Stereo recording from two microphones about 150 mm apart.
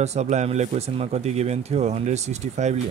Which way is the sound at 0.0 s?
50° right (ahead or behind).